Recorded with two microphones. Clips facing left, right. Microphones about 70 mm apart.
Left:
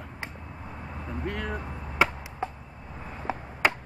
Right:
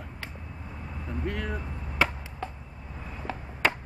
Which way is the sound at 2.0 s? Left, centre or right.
Centre.